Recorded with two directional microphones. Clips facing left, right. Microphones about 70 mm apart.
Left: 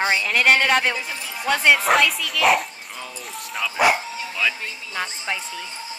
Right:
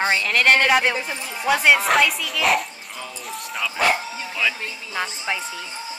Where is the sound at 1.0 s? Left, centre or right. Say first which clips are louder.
Right 2 dB; centre.